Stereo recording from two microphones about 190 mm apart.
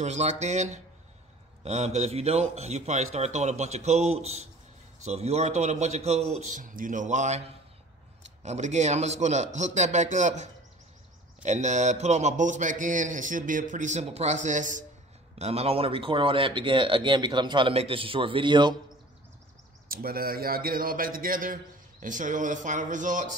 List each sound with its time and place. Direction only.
0.0 s a man's voice: 35° right (ahead or behind)
19.9 s a man's voice: 50° right (ahead or behind)